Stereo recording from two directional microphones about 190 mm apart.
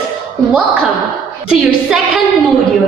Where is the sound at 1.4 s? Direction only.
5° right (ahead or behind).